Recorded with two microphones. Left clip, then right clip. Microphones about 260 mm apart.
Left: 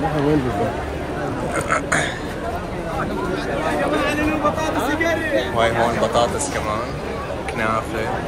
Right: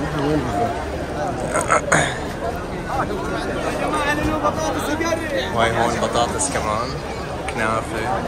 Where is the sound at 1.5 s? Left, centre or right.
Right.